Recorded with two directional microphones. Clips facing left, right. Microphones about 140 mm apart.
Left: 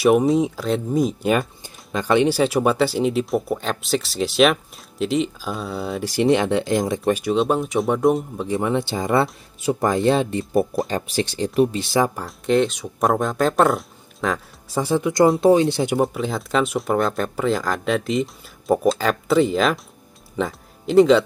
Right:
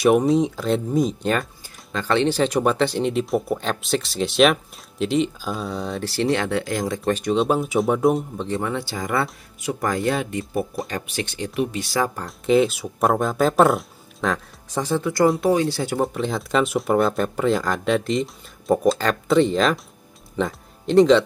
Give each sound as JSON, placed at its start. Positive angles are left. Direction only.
{"t": 0.0, "sound": "speech", "side_deg": 0}
{"t": 1.6, "sound": "speech", "side_deg": 15}
{"t": 7.1, "sound": "speech", "side_deg": 5}
{"t": 8.5, "sound": "speech", "side_deg": 20}
{"t": 12.2, "sound": "speech", "side_deg": 0}
{"t": 16.0, "sound": "speech", "side_deg": 0}